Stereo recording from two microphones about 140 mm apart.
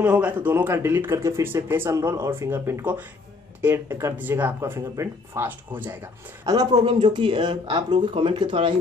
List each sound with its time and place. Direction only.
0.0 s speech: 10° right (ahead or behind)
6.4 s speech: 25° right (ahead or behind)
6.7 s speech: 40° right (ahead or behind)